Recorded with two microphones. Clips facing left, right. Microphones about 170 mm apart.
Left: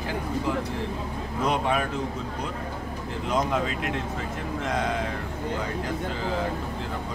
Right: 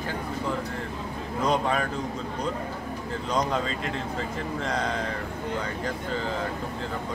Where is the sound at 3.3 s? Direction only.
10° left (ahead or behind).